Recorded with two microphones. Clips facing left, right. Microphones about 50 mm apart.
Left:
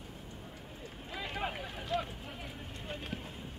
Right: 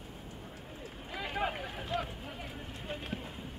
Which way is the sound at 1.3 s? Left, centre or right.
Centre.